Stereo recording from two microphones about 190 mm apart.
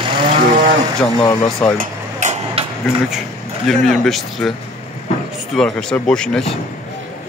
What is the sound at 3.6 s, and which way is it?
Speech, centre (ahead or behind).